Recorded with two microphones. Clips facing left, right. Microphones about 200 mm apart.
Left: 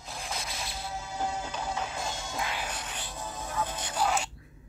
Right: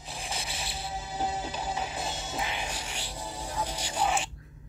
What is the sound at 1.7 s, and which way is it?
Music, 20° right (ahead or behind).